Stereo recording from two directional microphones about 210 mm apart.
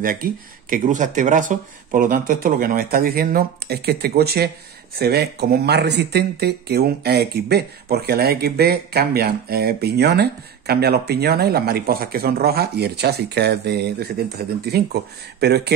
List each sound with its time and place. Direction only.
0.0 s speech: 40° right (ahead or behind)
15.4 s speech: 50° right (ahead or behind)